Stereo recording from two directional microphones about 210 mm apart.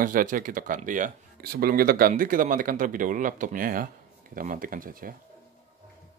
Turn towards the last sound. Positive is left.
turn(degrees=-40)  # may be behind; listen again after turning